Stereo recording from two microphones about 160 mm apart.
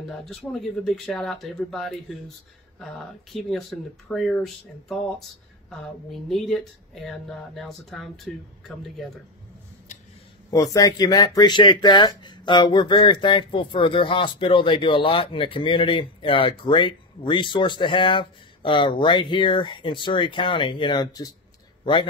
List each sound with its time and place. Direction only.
0.1 s speech: centre (ahead or behind)
3.3 s speech: centre (ahead or behind)
5.7 s speech: centre (ahead or behind)
10.5 s speech: 20° left (ahead or behind)